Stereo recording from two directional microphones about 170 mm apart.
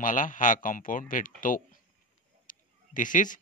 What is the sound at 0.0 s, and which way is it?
Speech, 50° left (ahead or behind).